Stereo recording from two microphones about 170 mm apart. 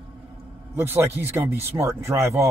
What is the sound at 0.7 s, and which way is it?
A man's voice, 15° right (ahead or behind).